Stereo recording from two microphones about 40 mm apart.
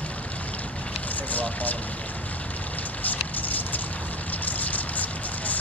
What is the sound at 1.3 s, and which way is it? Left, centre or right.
Speech, left.